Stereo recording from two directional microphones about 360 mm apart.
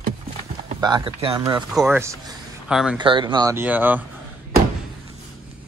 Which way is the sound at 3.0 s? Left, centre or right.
Centre.